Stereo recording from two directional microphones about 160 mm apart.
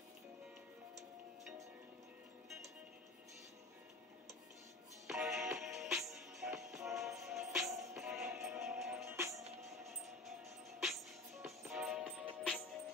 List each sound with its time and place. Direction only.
5.0 s music: 5° right (ahead or behind)
9.0 s music: 15° right (ahead or behind)
11.4 s music: centre (ahead or behind)